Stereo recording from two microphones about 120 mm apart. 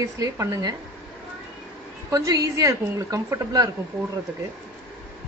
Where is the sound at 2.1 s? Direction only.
30° right (ahead or behind).